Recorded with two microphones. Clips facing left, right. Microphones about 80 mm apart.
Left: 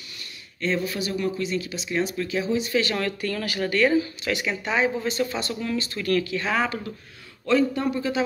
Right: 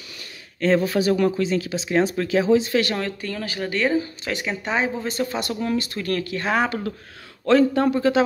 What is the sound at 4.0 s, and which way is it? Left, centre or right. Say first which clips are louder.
Speech: left 1 dB; right.